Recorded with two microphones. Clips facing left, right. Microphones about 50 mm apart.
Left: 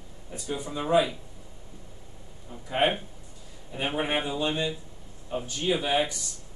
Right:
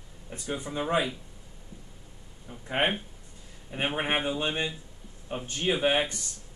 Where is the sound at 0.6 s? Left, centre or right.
Right.